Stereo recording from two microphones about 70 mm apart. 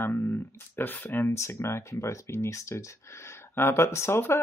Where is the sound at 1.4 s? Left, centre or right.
Left.